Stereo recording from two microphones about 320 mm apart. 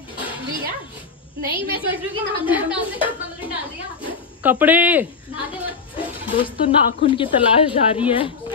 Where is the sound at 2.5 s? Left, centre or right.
Centre.